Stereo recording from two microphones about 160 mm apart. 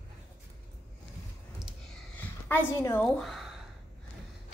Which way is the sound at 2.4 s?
15° left (ahead or behind).